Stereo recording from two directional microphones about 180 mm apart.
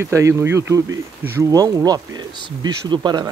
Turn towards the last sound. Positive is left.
turn(degrees=-25)  # may be behind; listen again after turning